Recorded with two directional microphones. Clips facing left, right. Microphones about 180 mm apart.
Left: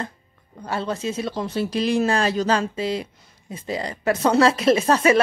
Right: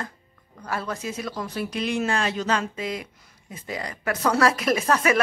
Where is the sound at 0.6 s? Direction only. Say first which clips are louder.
Left 4 dB; 25° left (ahead or behind).